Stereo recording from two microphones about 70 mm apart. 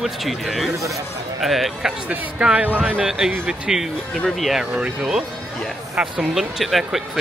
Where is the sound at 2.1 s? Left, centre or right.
Centre.